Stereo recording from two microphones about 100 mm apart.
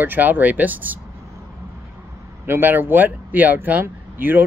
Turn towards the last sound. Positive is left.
turn(degrees=-20)  # may be behind; listen again after turning